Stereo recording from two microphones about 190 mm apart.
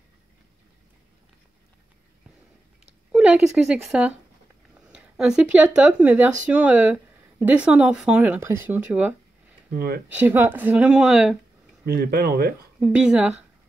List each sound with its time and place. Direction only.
3.1 s a woman's voice: 5° right (ahead or behind)
9.8 s speech: 55° right (ahead or behind)
10.0 s speech: 10° right (ahead or behind)
11.8 s speech: 55° right (ahead or behind)
12.8 s a woman's voice: 5° right (ahead or behind)